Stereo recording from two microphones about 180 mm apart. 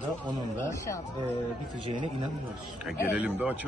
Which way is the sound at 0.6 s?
15° left (ahead or behind).